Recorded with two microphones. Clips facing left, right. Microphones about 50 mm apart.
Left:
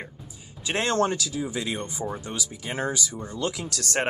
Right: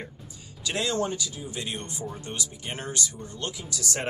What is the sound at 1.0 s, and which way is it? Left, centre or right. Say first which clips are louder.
Speech: left 5 dB; left.